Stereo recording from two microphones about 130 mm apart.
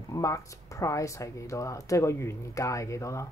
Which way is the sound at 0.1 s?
25° left (ahead or behind).